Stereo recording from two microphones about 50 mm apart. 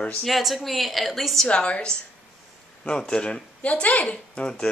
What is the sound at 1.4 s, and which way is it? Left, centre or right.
Speech, left.